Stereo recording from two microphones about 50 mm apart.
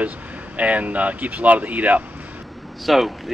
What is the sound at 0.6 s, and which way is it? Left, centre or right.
Speech, right.